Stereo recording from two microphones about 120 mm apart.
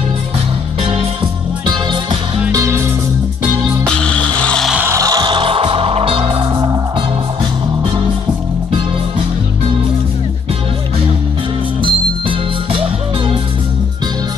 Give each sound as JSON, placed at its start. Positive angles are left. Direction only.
{"t": 2.5, "sound": "music", "side_deg": -25}
{"t": 3.8, "sound": "music", "side_deg": 10}
{"t": 4.7, "sound": "music", "side_deg": -25}
{"t": 11.8, "sound": "music", "side_deg": -45}